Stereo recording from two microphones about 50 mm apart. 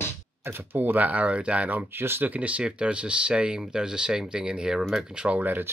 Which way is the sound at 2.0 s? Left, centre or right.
Right.